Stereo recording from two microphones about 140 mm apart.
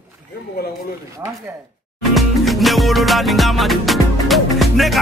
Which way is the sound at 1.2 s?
20° right (ahead or behind).